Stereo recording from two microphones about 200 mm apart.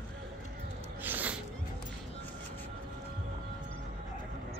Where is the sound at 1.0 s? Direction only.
10° right (ahead or behind).